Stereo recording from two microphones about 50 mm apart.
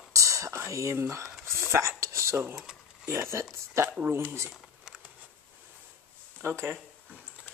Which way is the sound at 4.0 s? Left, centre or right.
Right.